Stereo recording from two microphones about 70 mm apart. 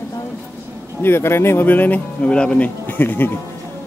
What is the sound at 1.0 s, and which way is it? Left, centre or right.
Speech, left.